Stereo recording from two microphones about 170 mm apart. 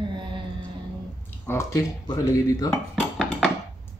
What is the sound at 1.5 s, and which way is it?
Speech, 20° left (ahead or behind).